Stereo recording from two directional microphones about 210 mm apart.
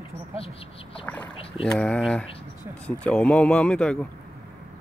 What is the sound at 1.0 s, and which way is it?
Speech, 5° left (ahead or behind).